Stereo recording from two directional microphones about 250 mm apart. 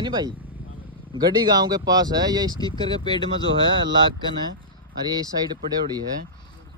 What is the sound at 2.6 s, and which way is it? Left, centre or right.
Speech, centre.